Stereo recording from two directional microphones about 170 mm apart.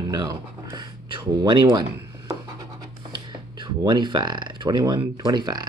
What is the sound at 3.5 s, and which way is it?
Speech, 25° right (ahead or behind).